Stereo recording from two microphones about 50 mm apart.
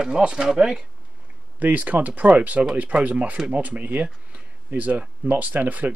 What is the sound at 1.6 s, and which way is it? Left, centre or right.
Speech, right.